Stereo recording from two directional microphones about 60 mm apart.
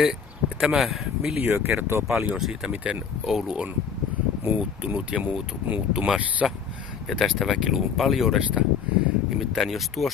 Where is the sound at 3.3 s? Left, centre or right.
Centre.